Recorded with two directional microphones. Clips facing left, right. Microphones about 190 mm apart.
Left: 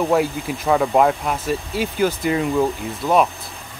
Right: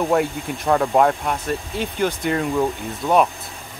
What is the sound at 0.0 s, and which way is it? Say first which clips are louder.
Speech: left 1 dB; centre (ahead or behind).